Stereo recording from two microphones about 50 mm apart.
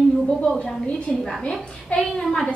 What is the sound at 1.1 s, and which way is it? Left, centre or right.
Speech, centre.